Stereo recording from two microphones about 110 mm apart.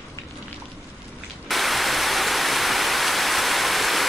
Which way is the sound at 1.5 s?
Centre (ahead or behind).